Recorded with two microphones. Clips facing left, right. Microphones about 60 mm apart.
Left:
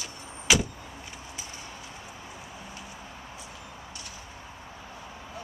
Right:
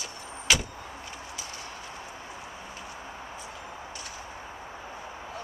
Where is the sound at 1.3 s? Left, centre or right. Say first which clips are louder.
Right 2 dB; left.